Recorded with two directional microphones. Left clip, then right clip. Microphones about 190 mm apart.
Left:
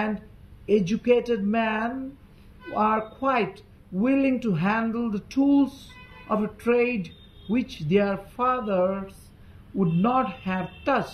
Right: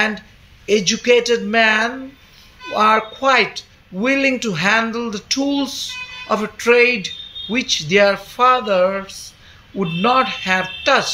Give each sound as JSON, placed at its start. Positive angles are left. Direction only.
{"t": 0.7, "sound": "speech", "side_deg": -35}